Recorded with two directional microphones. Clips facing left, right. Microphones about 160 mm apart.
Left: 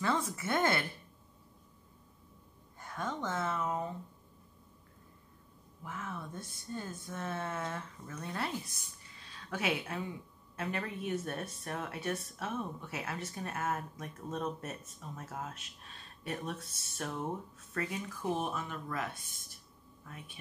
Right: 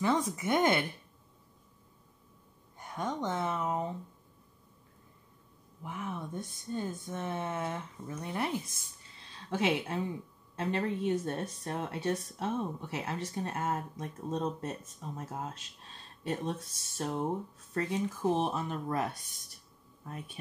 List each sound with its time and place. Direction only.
0.0 s speech: 15° right (ahead or behind)
2.8 s a woman's voice: 20° right (ahead or behind)
5.9 s a woman's voice: 20° right (ahead or behind); by 20.3 s 40° right (ahead or behind)